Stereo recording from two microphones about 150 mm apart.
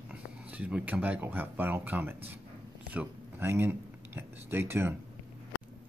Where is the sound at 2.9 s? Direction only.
15° right (ahead or behind).